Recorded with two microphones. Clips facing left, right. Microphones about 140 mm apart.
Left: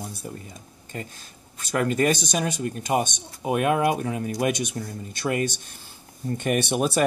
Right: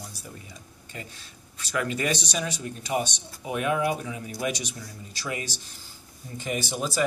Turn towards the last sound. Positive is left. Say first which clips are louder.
# left 6 dB
turn(degrees=65)  # may be behind; listen again after turning